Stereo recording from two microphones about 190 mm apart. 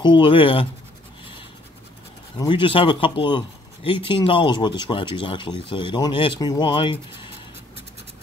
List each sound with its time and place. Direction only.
0.0 s speech: 25° left (ahead or behind)
2.3 s speech: 25° left (ahead or behind)